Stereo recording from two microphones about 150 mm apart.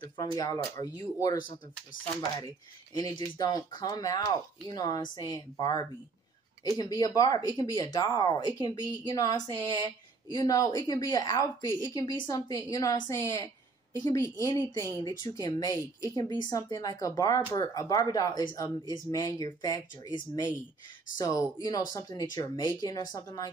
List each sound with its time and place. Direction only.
0.0 s speech: 25° left (ahead or behind)
3.0 s speech: 25° left (ahead or behind)
7.0 s speech: 25° left (ahead or behind)